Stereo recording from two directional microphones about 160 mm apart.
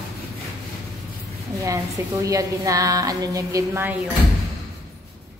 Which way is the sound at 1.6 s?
20° right (ahead or behind).